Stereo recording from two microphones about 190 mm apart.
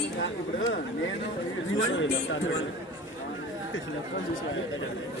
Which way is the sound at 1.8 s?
85° left.